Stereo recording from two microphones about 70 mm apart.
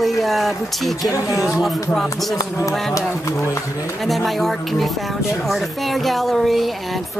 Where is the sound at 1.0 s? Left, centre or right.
Left.